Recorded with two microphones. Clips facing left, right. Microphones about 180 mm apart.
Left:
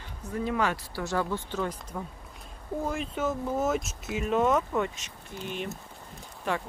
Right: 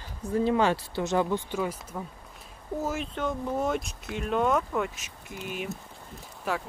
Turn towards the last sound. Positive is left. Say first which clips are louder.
# even
turn(degrees=-5)  # may be behind; listen again after turning